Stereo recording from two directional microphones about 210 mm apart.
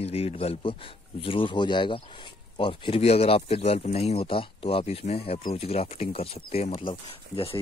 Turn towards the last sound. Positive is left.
turn(degrees=25)  # may be behind; listen again after turning